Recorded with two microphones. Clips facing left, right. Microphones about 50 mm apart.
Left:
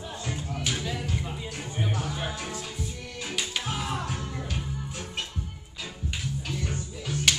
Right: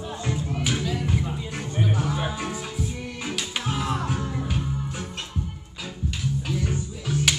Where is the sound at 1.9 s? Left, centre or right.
Centre.